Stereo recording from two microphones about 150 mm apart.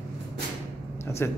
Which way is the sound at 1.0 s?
15° left (ahead or behind).